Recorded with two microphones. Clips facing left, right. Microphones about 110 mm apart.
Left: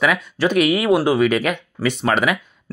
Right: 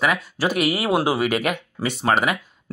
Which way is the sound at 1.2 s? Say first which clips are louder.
Left 4 dB; 50° right (ahead or behind).